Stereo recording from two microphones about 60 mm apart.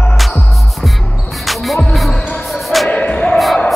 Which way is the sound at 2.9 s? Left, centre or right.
Left.